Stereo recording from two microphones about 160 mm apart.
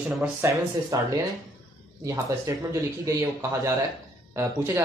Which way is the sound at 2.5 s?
20° right (ahead or behind).